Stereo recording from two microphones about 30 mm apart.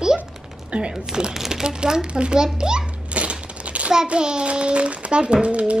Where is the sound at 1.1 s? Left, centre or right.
Right.